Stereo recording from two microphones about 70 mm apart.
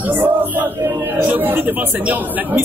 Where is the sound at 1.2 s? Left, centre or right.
Right.